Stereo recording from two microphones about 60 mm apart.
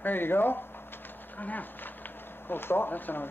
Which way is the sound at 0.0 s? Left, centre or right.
Left.